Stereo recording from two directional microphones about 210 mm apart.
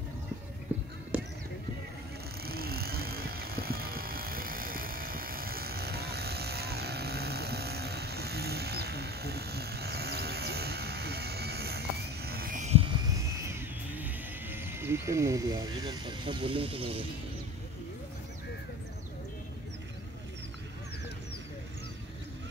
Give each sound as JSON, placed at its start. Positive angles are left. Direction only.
{"t": 2.4, "sound": "vehicle", "side_deg": -45}